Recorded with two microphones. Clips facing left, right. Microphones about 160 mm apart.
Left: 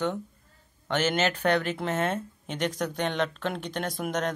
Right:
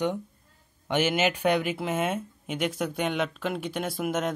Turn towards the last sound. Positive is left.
turn(degrees=-5)  # may be behind; listen again after turning